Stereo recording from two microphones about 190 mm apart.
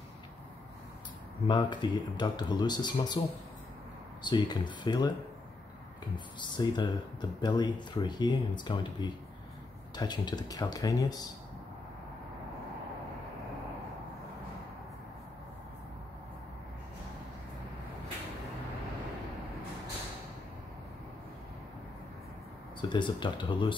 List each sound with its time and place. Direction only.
1.5 s speech: 25° left (ahead or behind)
4.2 s speech: 25° left (ahead or behind)
6.1 s speech: 25° left (ahead or behind)
22.8 s speech: 25° left (ahead or behind)